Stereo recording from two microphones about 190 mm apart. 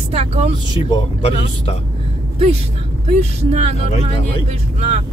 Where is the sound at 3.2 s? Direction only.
35° right (ahead or behind).